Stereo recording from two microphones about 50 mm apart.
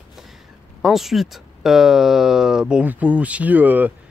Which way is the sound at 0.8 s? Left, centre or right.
Centre.